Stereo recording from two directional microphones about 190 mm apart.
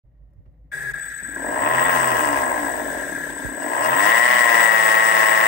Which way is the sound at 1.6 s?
65° left (ahead or behind).